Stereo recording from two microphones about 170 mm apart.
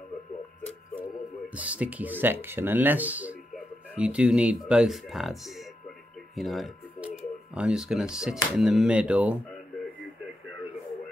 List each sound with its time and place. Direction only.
1.5 s speech: 10° right (ahead or behind)
6.3 s a sound: centre (ahead or behind)
7.5 s speech: 5° right (ahead or behind)